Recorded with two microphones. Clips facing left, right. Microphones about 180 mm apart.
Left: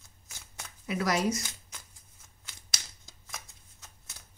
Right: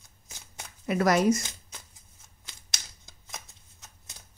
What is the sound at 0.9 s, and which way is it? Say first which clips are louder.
Speech: right 6 dB; 50° right (ahead or behind).